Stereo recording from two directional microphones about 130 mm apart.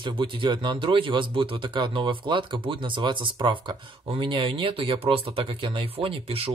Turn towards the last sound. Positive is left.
turn(degrees=-45)  # may be behind; listen again after turning